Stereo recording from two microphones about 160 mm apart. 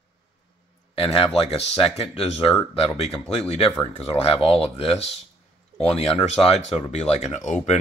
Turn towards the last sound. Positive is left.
turn(degrees=45)  # may be behind; listen again after turning